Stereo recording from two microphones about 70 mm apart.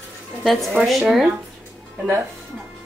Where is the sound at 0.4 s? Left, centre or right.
Centre.